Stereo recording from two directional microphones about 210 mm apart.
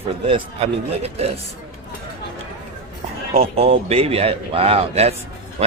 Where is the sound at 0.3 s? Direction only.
30° right (ahead or behind).